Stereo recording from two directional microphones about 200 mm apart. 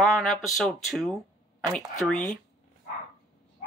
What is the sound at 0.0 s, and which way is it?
Speech, centre (ahead or behind).